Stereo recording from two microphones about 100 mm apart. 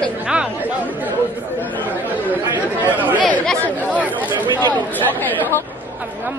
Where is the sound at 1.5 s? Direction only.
20° left (ahead or behind).